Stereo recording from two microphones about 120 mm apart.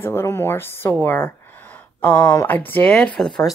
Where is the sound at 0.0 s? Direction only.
20° left (ahead or behind).